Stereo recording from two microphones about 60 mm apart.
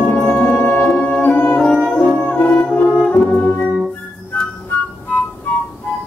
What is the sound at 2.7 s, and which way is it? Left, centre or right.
Brass instrument, left.